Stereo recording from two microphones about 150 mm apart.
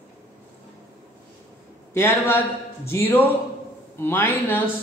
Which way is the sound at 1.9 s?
15° left (ahead or behind).